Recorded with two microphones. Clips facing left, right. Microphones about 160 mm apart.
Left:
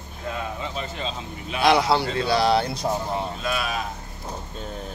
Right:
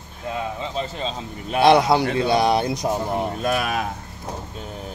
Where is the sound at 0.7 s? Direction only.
35° right (ahead or behind).